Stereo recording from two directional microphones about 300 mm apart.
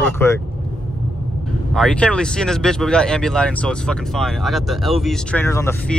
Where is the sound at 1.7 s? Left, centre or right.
Centre.